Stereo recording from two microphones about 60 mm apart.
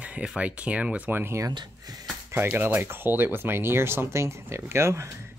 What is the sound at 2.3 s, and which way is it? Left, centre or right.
Speech, right.